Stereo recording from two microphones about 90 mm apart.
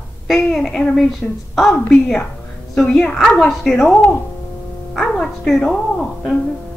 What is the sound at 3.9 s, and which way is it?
Speech, 20° left (ahead or behind).